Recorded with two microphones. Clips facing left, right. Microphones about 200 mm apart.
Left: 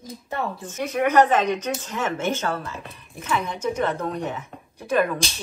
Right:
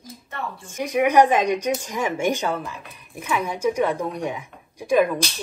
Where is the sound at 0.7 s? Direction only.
15° right (ahead or behind).